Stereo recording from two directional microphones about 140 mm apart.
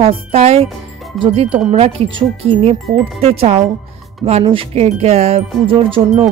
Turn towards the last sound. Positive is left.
turn(degrees=-40)  # may be behind; listen again after turning